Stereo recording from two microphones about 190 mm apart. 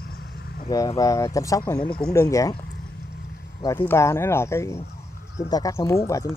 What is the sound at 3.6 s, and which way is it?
Speech, 15° left (ahead or behind).